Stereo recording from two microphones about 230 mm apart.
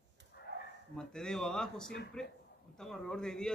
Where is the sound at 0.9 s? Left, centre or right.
Centre.